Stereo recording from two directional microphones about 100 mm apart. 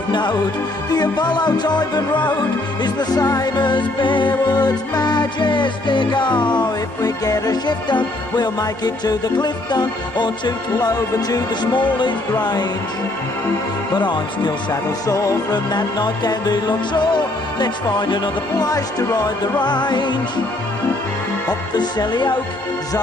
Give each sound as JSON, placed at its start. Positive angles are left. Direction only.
{"t": 0.1, "sound": "speech", "side_deg": 50}
{"t": 0.9, "sound": "music", "side_deg": 45}
{"t": 13.9, "sound": "music", "side_deg": 45}
{"t": 15.0, "sound": "music", "side_deg": 35}
{"t": 21.5, "sound": "music", "side_deg": 45}